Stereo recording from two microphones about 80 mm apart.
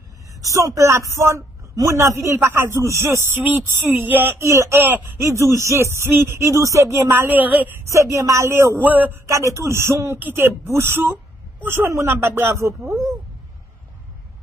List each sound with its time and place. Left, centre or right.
0.4 s a woman's voice: right
4.5 s speech: right
4.7 s a woman's voice: right
5.3 s speech: right
7.1 s a woman's voice: right
7.8 s speech: right
9.3 s speech: right